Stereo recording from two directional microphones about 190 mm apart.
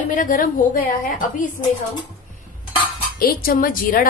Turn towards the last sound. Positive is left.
turn(degrees=45)  # may be behind; listen again after turning